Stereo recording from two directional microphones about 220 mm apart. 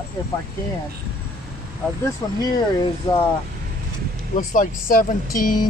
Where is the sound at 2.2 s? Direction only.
15° left (ahead or behind).